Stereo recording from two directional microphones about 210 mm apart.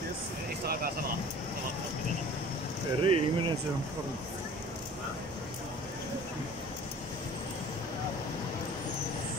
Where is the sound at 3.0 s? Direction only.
25° right (ahead or behind).